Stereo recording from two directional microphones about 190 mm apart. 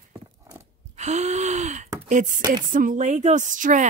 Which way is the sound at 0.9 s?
35° right (ahead or behind).